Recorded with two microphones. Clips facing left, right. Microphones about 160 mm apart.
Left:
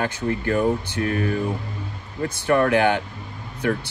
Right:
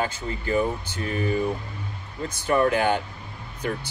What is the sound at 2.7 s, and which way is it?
Speech, 60° left (ahead or behind).